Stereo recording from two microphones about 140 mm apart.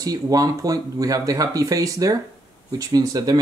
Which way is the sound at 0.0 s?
25° right (ahead or behind).